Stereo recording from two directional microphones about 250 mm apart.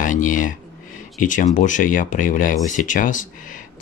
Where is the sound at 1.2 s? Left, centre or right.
Left.